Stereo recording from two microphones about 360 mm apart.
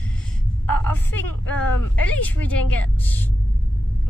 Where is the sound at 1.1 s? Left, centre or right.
Left.